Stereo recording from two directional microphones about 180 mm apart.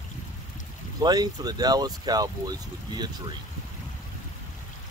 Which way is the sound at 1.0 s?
20° right (ahead or behind).